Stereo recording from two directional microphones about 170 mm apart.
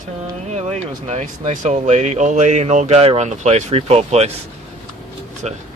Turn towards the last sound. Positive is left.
turn(degrees=-40)  # may be behind; listen again after turning